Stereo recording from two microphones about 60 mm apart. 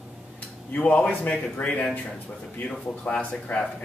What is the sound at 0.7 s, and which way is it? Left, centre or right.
Speech, left.